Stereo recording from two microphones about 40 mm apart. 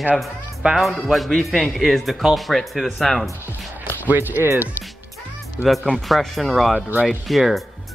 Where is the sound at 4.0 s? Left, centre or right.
Right.